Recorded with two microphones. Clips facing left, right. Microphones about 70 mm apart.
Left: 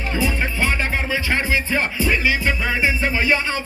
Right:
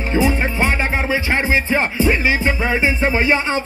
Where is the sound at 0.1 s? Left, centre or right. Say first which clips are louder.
Right 6 dB; right.